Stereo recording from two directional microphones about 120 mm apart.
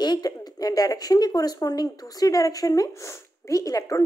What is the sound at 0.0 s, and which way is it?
Speech, 35° left (ahead or behind).